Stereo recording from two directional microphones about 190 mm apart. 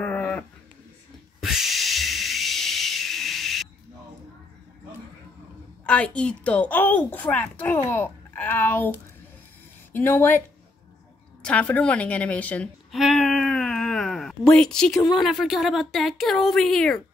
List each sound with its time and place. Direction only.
0.0 s a sound: 5° left (ahead or behind)
5.9 s a woman's voice: 5° left (ahead or behind)
9.9 s a woman's voice: 10° left (ahead or behind)
11.4 s a woman's voice: 10° left (ahead or behind)